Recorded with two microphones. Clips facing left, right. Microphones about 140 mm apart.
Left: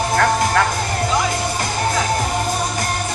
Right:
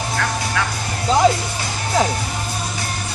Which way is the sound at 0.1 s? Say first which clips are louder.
Left 8 dB; 50° left (ahead or behind).